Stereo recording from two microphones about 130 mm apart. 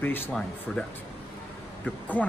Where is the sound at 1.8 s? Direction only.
10° left (ahead or behind).